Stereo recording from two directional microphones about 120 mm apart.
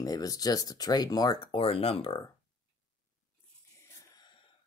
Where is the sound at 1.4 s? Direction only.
50° left (ahead or behind).